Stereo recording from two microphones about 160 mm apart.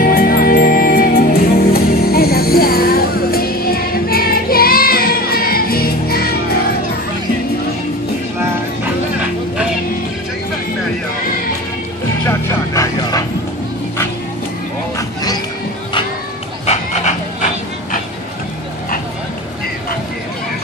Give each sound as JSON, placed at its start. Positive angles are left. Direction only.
{"t": 0.0, "sound": "music", "side_deg": 65}
{"t": 12.3, "sound": "vehicle", "side_deg": 20}
{"t": 16.6, "sound": "dog", "side_deg": 45}